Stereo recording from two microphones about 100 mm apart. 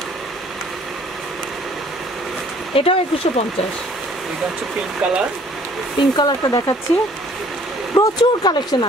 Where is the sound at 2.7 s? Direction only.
75° left (ahead or behind).